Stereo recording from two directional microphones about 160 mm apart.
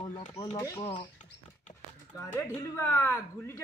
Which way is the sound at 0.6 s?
20° left (ahead or behind).